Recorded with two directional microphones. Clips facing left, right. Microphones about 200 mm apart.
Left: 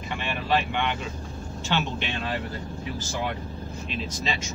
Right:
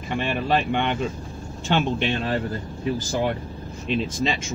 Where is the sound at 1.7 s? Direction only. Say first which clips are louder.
Right 6 dB; 50° right (ahead or behind).